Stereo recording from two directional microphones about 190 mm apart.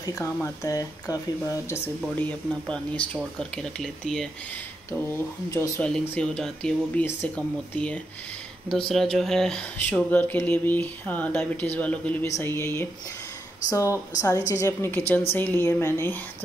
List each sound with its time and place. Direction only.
0.0 s speech: 15° left (ahead or behind)